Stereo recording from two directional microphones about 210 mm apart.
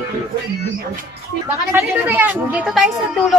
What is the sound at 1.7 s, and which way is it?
A woman's voice, 10° right (ahead or behind).